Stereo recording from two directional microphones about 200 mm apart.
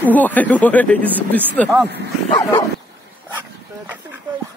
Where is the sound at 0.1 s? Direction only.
10° left (ahead or behind).